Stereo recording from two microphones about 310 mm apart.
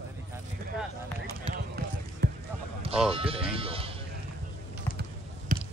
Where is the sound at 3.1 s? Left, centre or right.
Centre.